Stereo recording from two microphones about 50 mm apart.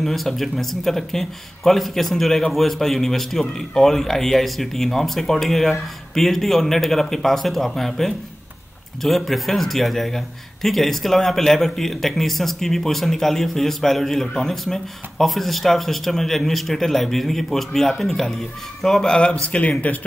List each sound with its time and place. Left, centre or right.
0.0 s a man's voice: centre
19.4 s speech: left